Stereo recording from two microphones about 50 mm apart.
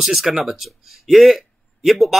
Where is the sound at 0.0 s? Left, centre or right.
Centre.